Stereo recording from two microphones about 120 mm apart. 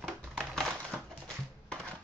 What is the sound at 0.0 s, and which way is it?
Crushing, 5° left (ahead or behind).